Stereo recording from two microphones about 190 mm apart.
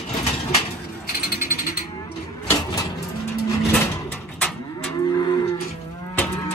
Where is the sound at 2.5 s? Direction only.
20° left (ahead or behind).